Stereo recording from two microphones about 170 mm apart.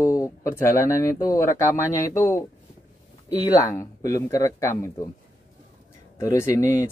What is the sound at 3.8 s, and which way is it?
Speech, 20° left (ahead or behind).